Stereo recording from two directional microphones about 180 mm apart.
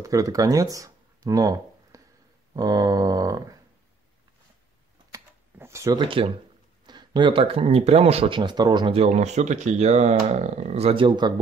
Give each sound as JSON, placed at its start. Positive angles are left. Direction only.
{"t": 0.0, "sound": "speech", "side_deg": -20}
{"t": 2.5, "sound": "a sound", "side_deg": -20}
{"t": 5.1, "sound": "typewriter", "side_deg": -15}
{"t": 6.9, "sound": "speech", "side_deg": -25}